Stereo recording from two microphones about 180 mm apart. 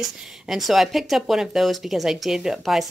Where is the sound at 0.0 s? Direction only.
Centre (ahead or behind).